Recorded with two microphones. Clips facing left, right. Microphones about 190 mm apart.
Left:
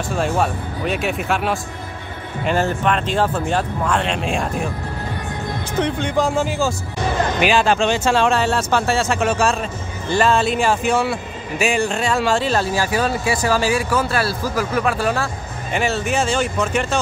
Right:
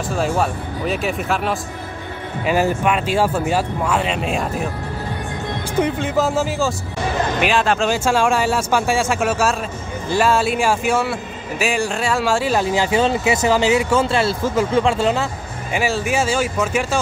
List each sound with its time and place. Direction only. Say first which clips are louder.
0.1 s speech: even; centre (ahead or behind)
5.8 s speech: right 1 dB; 5° right (ahead or behind); by 15.2 s 25° right (ahead or behind)
15.7 s speech: even; 5° right (ahead or behind)